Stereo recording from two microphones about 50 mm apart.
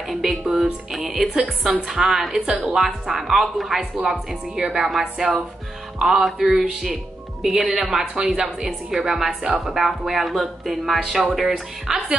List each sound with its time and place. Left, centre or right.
0.1 s speech: centre
2.4 s speech: centre
2.8 s speech: centre